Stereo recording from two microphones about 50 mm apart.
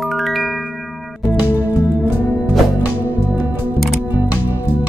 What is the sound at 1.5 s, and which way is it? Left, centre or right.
Music, right.